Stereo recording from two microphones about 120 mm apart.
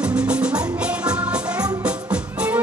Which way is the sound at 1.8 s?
10° right (ahead or behind).